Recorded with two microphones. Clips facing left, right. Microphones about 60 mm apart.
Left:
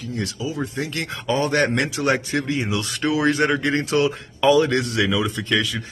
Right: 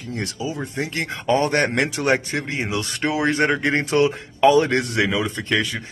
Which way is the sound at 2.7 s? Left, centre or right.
Right.